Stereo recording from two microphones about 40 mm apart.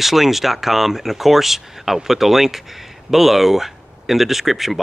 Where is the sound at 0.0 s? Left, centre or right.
Centre.